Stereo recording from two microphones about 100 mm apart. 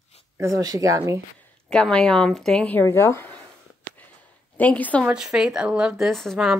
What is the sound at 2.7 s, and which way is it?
Speech, 20° left (ahead or behind).